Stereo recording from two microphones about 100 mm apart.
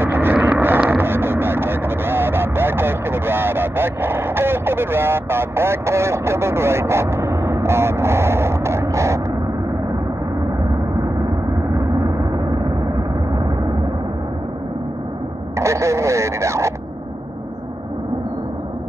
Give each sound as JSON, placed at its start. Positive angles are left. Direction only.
{"t": 0.0, "sound": "vehicle", "side_deg": -20}
{"t": 15.5, "sound": "radio", "side_deg": -30}